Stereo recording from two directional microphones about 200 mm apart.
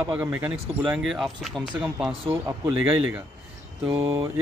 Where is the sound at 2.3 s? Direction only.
15° right (ahead or behind).